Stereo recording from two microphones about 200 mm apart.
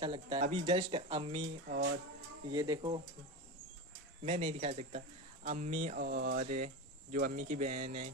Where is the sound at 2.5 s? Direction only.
20° right (ahead or behind).